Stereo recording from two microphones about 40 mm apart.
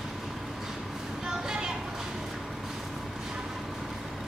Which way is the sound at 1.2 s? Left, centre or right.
Centre.